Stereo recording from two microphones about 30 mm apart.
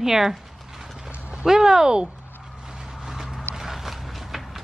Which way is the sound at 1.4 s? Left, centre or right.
Right.